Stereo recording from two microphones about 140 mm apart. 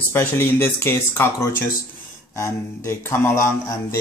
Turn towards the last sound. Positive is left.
turn(degrees=20)  # may be behind; listen again after turning